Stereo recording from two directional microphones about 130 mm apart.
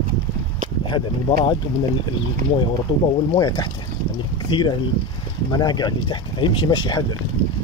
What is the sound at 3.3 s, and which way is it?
Speech, 30° left (ahead or behind).